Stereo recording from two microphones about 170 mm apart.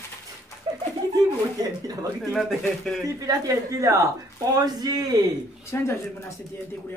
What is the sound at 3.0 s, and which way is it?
Speech, 20° right (ahead or behind).